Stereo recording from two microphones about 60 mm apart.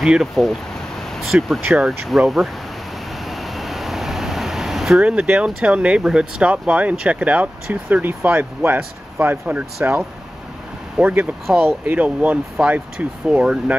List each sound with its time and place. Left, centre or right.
0.0 s speech: centre
3.3 s air conditioning: centre
5.0 s speech: right
8.4 s speech: right
11.0 s speech: centre
11.8 s speech: right
12.6 s speech: centre